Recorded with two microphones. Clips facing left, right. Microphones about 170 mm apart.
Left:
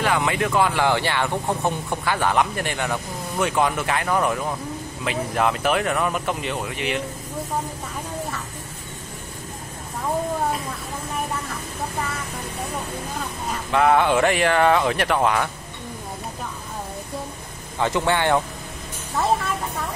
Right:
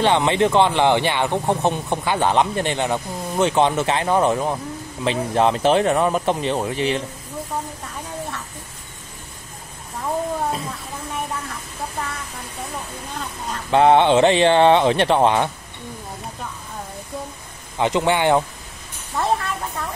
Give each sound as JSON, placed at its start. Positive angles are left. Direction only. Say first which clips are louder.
{"t": 0.0, "sound": "speech", "louder": "right 5 dB", "side_deg": -25}
{"t": 13.7, "sound": "speech", "louder": "right 4 dB", "side_deg": -30}
{"t": 17.7, "sound": "a man's voice", "louder": "right 2 dB", "side_deg": -20}
{"t": 19.1, "sound": "a woman's voice", "louder": "even", "side_deg": 0}